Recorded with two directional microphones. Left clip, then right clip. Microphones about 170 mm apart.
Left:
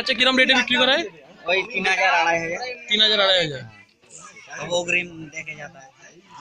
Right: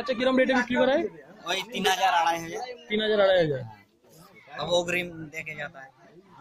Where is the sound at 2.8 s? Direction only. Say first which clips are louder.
Left 5 dB; 30° right (ahead or behind).